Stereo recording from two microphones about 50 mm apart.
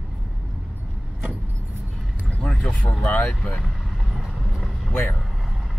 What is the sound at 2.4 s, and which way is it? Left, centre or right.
Speech, centre.